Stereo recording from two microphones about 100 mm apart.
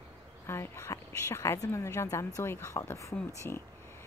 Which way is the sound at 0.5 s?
25° left (ahead or behind).